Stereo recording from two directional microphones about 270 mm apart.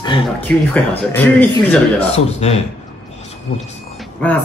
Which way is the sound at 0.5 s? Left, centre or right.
Centre.